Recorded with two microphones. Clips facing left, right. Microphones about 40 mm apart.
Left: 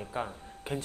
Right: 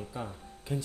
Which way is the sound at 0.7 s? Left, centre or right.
Left.